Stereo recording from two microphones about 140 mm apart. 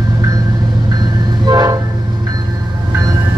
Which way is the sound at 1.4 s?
30° right (ahead or behind).